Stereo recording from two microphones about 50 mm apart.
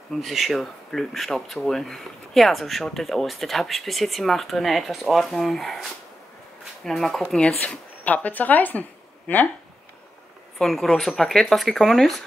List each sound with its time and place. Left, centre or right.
0.1 s speech: centre
7.3 s speech: left
8.0 s speech: left
10.6 s speech: centre